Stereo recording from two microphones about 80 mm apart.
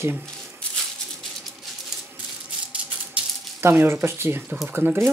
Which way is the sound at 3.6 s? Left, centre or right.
Right.